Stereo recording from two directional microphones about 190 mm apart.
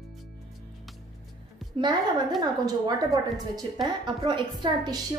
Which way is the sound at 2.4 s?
20° right (ahead or behind).